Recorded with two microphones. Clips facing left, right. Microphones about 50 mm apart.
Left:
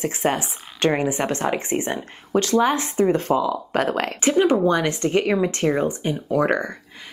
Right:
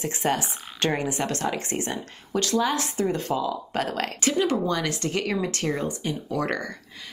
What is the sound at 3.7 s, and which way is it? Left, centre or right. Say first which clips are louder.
Speech: left 5 dB; left.